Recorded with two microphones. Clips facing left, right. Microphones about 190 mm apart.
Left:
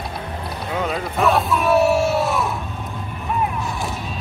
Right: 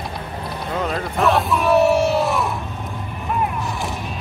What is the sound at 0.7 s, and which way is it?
Crowd, centre (ahead or behind).